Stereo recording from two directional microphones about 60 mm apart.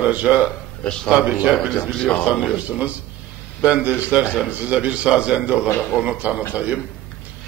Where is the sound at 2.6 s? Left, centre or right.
Right.